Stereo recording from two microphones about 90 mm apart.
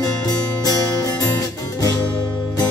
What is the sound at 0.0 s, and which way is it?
Music, 45° left (ahead or behind).